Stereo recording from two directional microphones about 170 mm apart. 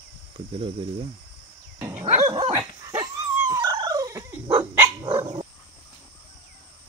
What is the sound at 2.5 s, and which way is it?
Dog, 20° right (ahead or behind).